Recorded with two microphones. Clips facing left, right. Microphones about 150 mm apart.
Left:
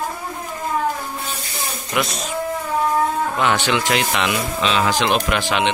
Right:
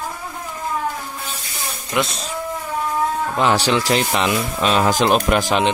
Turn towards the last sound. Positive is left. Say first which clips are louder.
# right 3 dB
turn(degrees=-40)  # may be behind; listen again after turning